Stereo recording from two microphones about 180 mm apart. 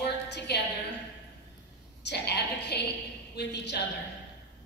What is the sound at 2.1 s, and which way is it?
A woman's voice, 70° left (ahead or behind).